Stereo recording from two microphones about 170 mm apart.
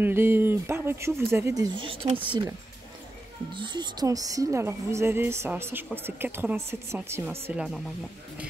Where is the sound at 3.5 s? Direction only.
25° right (ahead or behind).